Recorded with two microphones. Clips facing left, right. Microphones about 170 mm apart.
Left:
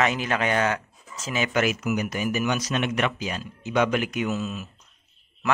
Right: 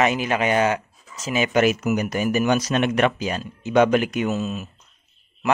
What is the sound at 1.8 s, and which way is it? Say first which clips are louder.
Speech: right 4 dB; 40° right (ahead or behind).